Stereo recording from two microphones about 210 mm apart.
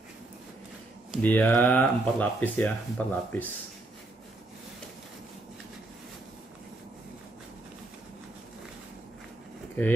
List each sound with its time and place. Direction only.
1.1 s speech: 5° left (ahead or behind)